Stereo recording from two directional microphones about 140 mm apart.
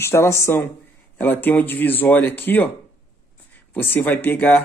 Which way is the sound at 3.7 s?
15° left (ahead or behind).